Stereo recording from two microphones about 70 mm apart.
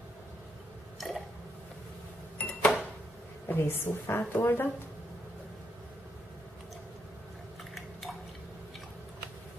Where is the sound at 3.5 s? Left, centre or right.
Left.